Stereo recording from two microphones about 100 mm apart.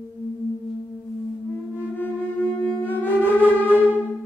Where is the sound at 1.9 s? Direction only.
20° left (ahead or behind).